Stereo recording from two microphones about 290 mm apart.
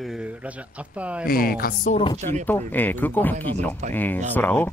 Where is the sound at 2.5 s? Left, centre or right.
Centre.